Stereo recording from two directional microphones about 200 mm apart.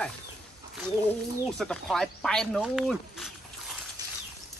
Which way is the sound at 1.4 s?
Centre (ahead or behind).